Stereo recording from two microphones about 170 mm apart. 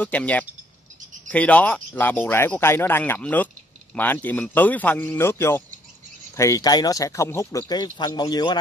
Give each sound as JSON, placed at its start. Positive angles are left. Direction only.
{"t": 0.0, "sound": "speech", "side_deg": 10}